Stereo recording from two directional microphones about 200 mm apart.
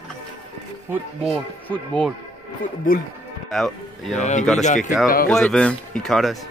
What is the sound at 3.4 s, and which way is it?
Speech, centre (ahead or behind).